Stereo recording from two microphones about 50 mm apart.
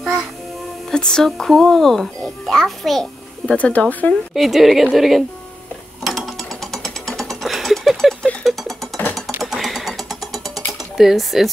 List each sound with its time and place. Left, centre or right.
0.9 s a child's voice: centre
3.5 s speech: left
4.3 s speech: centre
6.0 s music: centre
11.0 s speech: centre